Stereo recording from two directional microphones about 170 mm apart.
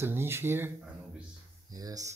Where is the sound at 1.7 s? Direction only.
20° right (ahead or behind).